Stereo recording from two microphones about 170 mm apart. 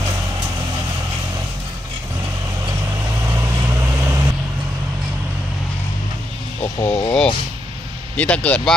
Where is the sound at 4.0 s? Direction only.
20° right (ahead or behind).